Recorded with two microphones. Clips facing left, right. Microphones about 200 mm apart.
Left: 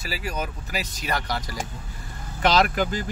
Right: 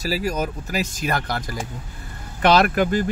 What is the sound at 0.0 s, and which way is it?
Speech, 40° right (ahead or behind).